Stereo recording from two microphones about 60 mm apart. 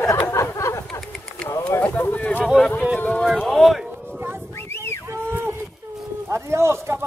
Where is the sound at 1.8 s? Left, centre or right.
Left.